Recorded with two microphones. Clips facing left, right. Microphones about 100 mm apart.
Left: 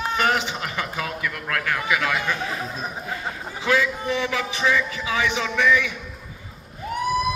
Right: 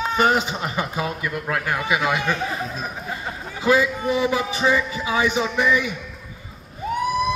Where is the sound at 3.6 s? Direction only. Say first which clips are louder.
Right 3 dB; 15° right (ahead or behind).